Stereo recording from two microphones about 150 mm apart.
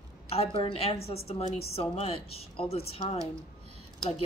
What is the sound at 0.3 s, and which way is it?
A woman's voice, 40° left (ahead or behind).